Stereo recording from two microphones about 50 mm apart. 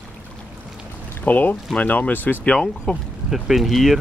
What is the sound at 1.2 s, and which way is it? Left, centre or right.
Speech, left.